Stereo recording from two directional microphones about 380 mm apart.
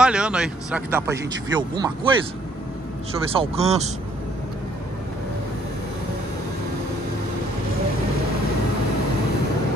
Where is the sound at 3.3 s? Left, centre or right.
Centre.